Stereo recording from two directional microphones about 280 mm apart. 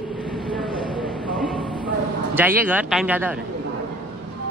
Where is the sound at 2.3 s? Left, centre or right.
Centre.